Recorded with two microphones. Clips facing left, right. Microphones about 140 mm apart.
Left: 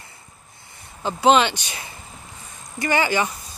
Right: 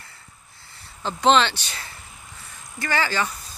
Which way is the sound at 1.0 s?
10° left (ahead or behind).